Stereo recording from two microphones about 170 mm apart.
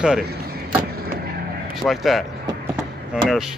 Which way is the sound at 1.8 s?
Centre (ahead or behind).